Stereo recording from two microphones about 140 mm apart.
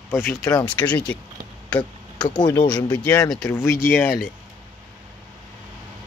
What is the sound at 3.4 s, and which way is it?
Speech, 20° left (ahead or behind).